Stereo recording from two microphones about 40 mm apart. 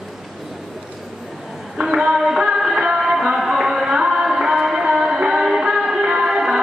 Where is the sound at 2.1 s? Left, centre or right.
Centre.